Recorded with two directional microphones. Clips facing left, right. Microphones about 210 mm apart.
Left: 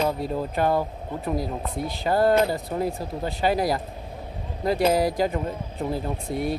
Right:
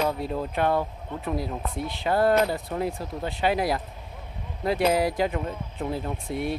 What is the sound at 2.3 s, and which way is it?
Speech, 30° left (ahead or behind).